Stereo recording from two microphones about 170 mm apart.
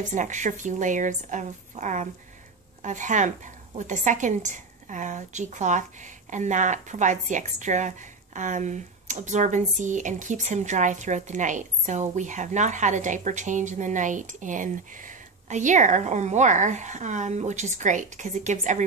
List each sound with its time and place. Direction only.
0.1 s speech: 45° right (ahead or behind)